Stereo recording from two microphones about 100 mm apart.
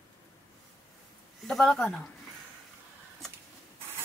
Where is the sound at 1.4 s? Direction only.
5° left (ahead or behind).